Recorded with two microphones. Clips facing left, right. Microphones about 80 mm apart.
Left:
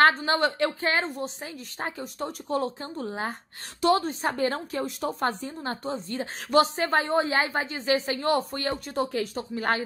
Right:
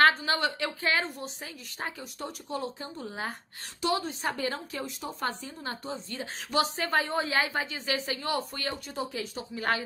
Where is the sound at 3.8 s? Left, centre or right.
Left.